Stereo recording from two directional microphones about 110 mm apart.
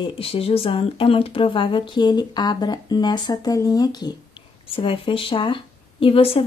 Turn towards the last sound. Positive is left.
turn(degrees=60)  # may be behind; listen again after turning